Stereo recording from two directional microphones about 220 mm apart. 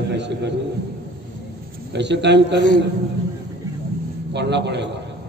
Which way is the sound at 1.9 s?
50° right (ahead or behind).